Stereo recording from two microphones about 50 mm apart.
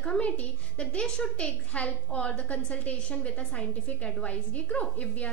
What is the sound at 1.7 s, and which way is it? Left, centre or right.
A woman's voice, left.